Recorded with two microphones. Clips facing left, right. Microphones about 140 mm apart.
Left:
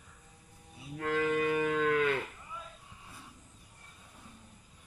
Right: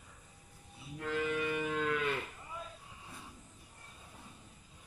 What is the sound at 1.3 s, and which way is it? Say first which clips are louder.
Cattle: left 5 dB; 75° left (ahead or behind).